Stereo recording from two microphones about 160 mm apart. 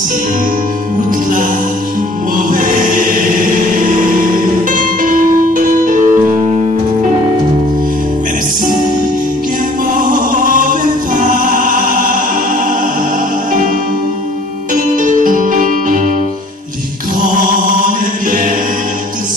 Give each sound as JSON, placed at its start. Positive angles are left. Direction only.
{"t": 4.6, "sound": "music", "side_deg": -55}
{"t": 11.1, "sound": "music", "side_deg": -55}
{"t": 14.7, "sound": "music", "side_deg": -55}